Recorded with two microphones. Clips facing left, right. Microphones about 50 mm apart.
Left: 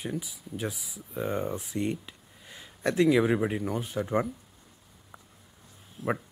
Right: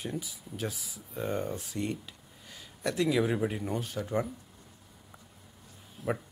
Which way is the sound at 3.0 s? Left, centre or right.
Centre.